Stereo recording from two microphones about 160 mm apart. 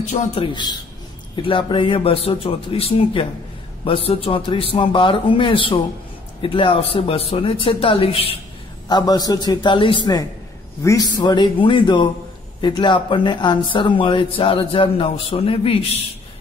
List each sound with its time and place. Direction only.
0.0 s a man's voice: 50° left (ahead or behind)
0.4 s a man's voice: 30° left (ahead or behind)
8.8 s a man's voice: 25° left (ahead or behind)